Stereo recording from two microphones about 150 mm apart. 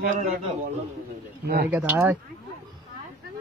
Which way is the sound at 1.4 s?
90° right.